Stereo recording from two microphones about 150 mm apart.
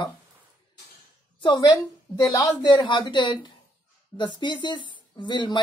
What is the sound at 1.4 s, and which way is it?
A woman's voice, 30° left (ahead or behind).